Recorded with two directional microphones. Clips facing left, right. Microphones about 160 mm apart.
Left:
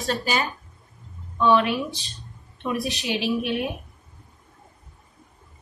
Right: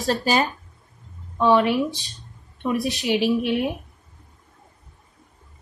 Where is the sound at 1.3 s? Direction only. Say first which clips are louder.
Right 2 dB; 30° right (ahead or behind).